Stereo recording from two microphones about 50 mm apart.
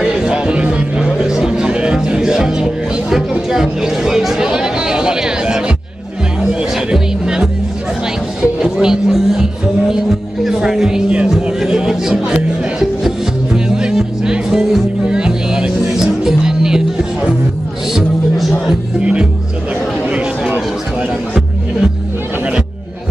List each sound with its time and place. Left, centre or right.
0.0 s music: centre
6.9 s music: centre
18.9 s music: right